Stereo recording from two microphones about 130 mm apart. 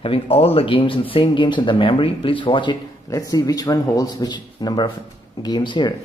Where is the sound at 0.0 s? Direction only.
50° left (ahead or behind).